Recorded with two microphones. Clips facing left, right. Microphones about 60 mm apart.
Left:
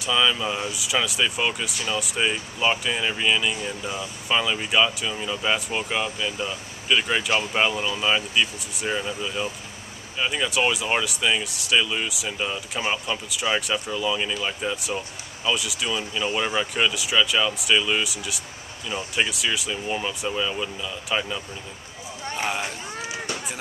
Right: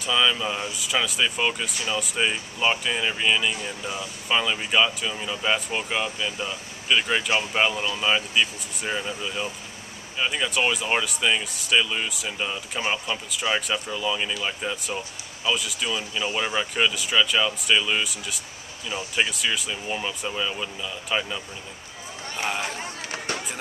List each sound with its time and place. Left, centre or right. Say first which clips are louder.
0.0 s speech: left 1 dB; centre
22.4 s speech: even; centre
22.8 s run: left 1 dB; right